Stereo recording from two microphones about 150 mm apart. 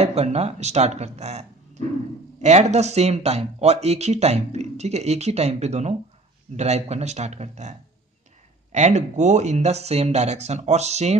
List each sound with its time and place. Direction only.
0.0 s speech: 45° right (ahead or behind)
8.7 s speech: 50° right (ahead or behind)